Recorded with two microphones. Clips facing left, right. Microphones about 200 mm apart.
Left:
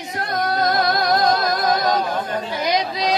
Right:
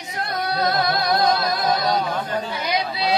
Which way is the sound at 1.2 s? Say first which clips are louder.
Left 1 dB; 45° left (ahead or behind).